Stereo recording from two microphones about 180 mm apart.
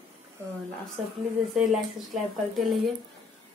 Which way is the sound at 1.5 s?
Centre (ahead or behind).